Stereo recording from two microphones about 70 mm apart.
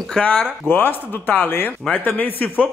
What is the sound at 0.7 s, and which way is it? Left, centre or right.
Speech, left.